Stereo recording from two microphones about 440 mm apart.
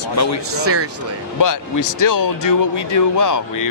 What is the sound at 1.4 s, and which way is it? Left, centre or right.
Speech, left.